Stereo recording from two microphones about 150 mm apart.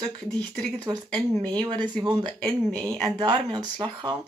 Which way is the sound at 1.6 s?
30° right (ahead or behind).